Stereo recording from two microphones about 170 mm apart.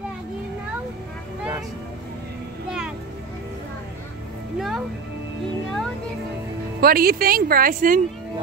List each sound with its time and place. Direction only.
4.6 s music: centre (ahead or behind)
6.8 s speech: 60° right (ahead or behind)